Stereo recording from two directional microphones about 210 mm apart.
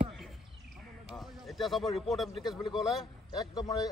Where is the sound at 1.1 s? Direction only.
Centre (ahead or behind).